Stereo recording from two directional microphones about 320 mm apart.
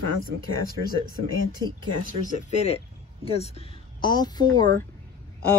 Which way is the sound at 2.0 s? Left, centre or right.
Left.